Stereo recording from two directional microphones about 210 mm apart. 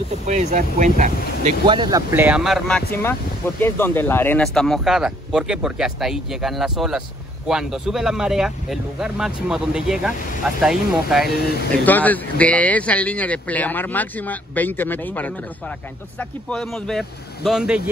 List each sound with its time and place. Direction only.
0.3 s speech: 35° right (ahead or behind)
1.7 s speech: 20° right (ahead or behind); by 2.8 s centre (ahead or behind)
2.9 s speech: 10° left (ahead or behind)